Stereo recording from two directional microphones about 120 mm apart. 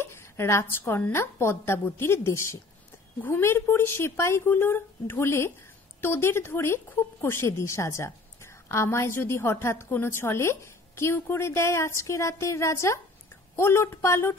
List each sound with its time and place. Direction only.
0.0 s a woman's voice: 20° left (ahead or behind)